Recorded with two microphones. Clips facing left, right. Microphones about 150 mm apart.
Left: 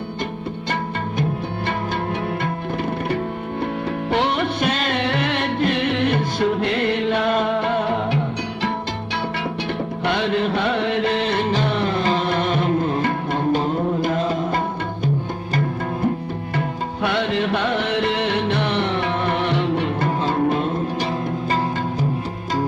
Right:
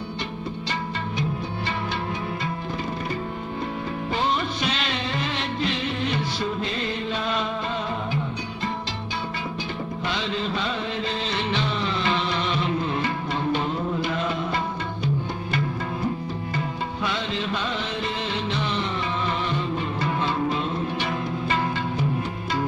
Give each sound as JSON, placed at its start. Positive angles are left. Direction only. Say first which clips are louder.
{"t": 4.1, "sound": "music", "louder": "left 5 dB", "side_deg": 70}
{"t": 16.5, "sound": "music", "louder": "left 5 dB", "side_deg": 65}
{"t": 20.1, "sound": "music", "louder": "left 4 dB", "side_deg": 45}